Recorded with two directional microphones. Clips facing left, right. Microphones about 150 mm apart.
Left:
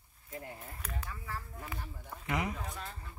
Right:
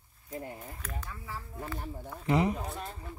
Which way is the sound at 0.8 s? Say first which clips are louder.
Right 1 dB; 10° left (ahead or behind).